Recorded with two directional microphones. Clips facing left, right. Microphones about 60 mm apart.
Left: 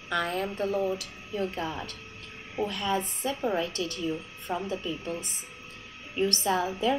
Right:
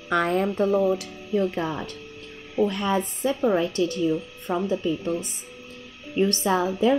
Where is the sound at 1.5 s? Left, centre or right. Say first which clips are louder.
Right 5 dB; right.